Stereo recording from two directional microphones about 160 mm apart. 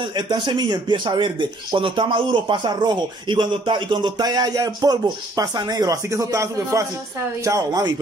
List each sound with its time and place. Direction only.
0.0 s speech: 25° right (ahead or behind)